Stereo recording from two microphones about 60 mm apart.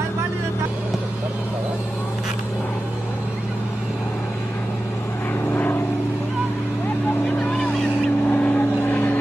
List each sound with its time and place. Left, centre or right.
5.5 s vehicle: left
7.3 s vehicle: centre